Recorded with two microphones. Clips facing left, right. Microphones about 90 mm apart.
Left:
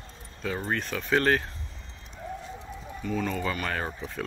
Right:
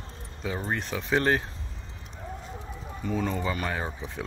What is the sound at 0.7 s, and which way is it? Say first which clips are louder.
Speech: left 1 dB; 20° right (ahead or behind).